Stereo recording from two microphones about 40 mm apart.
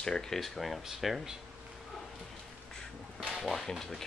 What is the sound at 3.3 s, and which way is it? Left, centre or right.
Speech, centre.